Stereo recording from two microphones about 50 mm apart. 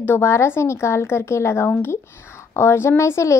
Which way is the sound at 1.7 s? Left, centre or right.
Left.